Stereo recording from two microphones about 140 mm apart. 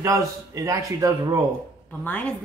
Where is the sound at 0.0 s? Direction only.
25° right (ahead or behind).